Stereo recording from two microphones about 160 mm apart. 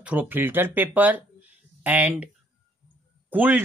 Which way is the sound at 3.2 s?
10° right (ahead or behind).